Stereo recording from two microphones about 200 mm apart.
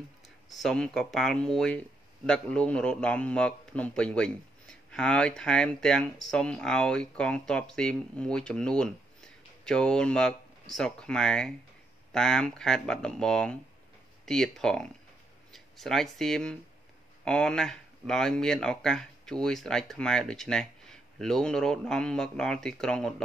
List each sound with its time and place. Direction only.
0.6 s speech: 5° left (ahead or behind)